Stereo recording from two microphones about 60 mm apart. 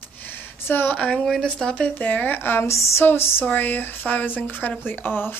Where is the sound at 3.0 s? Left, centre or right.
Left.